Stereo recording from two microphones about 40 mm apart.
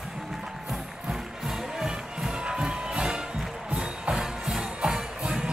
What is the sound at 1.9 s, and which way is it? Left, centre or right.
Music, centre.